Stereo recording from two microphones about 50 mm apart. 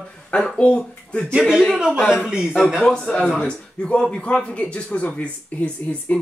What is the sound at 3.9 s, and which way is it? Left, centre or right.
Speech, left.